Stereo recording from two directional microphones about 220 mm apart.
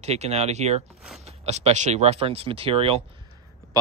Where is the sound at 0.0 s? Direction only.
30° right (ahead or behind).